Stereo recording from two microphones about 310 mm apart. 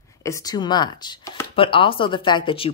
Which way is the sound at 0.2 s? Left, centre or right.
Centre.